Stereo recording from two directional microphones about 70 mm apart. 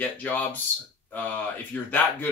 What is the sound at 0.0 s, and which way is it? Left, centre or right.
Speech, left.